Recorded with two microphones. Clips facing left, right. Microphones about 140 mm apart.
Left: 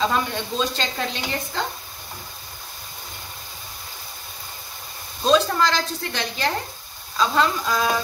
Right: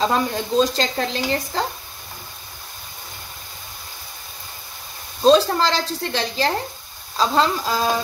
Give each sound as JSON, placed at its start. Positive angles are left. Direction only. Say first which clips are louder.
{"t": 0.0, "sound": "speech", "louder": "right 3 dB", "side_deg": -35}
{"t": 5.2, "sound": "speech", "louder": "right 4 dB", "side_deg": -30}